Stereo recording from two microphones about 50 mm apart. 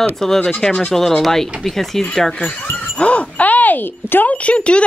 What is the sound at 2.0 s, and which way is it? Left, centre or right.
Speech, centre.